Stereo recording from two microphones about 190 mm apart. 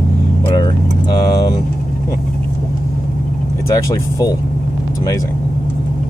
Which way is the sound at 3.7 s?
20° left (ahead or behind).